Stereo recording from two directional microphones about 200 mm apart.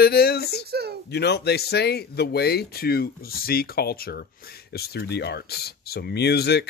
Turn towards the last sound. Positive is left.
turn(degrees=55)  # may be behind; listen again after turning